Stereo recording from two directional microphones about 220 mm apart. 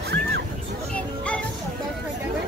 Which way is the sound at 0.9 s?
5° left (ahead or behind).